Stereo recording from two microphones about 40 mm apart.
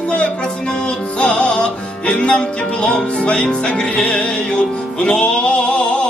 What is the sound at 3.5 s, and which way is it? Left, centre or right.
Music, left.